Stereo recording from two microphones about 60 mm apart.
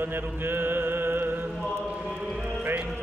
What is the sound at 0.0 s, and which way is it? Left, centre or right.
Music, right.